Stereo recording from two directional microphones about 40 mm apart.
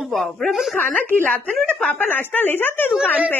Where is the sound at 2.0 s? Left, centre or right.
Left.